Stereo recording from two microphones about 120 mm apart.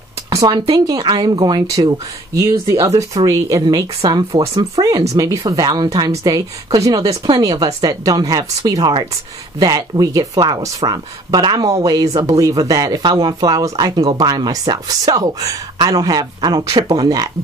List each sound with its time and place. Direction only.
0.3 s speech: 30° right (ahead or behind)